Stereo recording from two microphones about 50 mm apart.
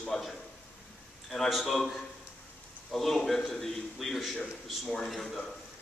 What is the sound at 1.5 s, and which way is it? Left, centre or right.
A man's voice, centre.